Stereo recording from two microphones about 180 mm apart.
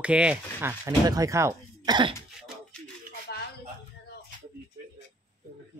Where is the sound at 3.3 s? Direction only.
65° left (ahead or behind).